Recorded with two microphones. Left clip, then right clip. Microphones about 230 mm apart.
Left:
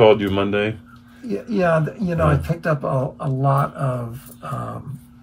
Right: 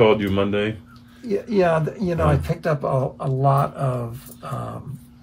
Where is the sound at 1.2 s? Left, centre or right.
Right.